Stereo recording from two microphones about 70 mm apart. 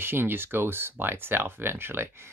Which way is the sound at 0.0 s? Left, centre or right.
Right.